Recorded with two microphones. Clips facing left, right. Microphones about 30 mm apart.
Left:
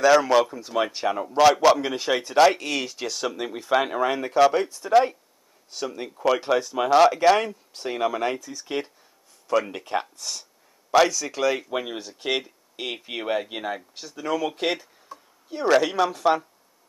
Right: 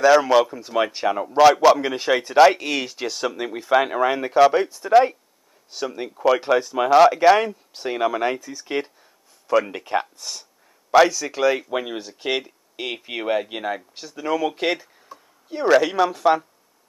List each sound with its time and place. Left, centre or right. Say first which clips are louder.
0.0 s a man's voice: right 3 dB; centre